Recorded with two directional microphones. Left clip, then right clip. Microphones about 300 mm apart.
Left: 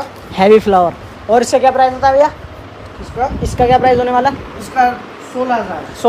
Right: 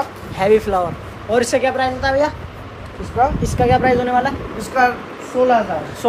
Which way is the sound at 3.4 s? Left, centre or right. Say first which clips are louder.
Left 4 dB; left.